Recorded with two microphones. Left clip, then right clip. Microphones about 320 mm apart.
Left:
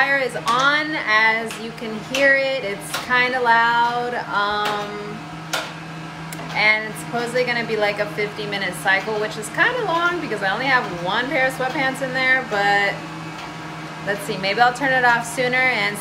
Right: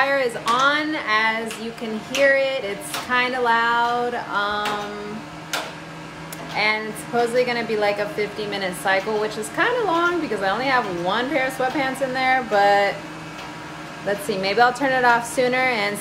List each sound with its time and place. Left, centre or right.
0.0 s speech: centre
6.5 s speech: centre
14.0 s speech: centre